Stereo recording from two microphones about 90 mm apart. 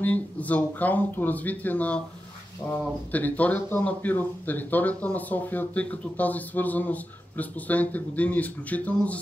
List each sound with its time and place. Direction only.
0.0 s speech: 15° left (ahead or behind)